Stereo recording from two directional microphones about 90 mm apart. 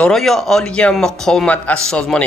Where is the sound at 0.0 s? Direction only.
5° left (ahead or behind).